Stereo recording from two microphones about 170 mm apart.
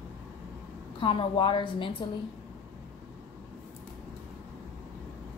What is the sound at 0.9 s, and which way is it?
Speech, 30° left (ahead or behind).